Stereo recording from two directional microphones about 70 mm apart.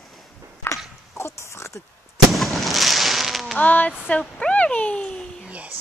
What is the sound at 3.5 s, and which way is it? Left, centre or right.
Speech, left.